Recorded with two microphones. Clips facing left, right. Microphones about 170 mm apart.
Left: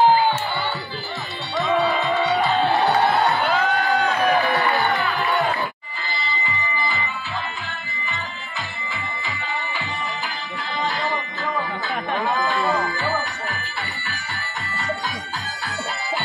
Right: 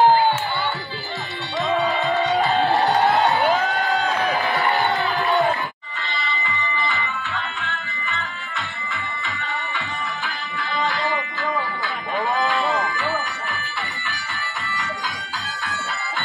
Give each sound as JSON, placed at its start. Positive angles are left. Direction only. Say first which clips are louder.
{"t": 1.6, "sound": "music", "louder": "left 1 dB", "side_deg": -20}
{"t": 3.4, "sound": "crowd", "louder": "even", "side_deg": -45}
{"t": 4.4, "sound": "music", "louder": "left 1 dB", "side_deg": -20}
{"t": 10.8, "sound": "music", "louder": "right 1 dB", "side_deg": 20}